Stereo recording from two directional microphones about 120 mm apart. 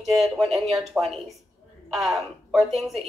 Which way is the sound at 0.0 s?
Centre (ahead or behind).